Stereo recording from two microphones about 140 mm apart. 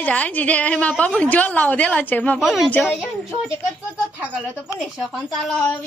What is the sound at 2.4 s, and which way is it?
Speech, centre (ahead or behind).